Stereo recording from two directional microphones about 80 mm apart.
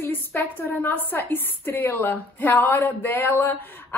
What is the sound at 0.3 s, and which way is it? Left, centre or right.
A woman's voice, left.